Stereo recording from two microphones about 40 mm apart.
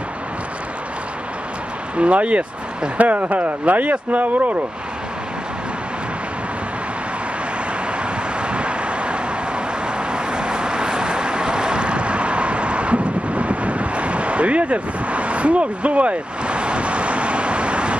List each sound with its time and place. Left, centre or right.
2.0 s speech: right
8.4 s vehicle: right